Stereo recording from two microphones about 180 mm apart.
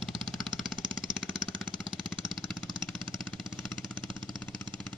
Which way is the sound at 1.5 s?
25° right (ahead or behind).